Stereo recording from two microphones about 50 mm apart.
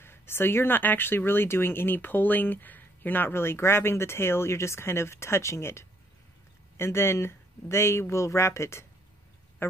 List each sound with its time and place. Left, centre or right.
0.0 s speech: left
9.6 s speech: left